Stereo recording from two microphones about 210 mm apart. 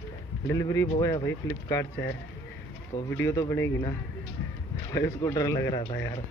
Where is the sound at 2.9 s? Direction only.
15° left (ahead or behind).